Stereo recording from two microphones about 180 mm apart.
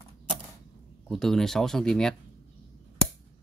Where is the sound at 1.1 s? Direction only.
Centre (ahead or behind).